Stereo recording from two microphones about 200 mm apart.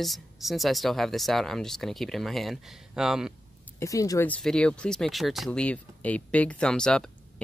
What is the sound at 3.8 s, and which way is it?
Speech, 15° left (ahead or behind).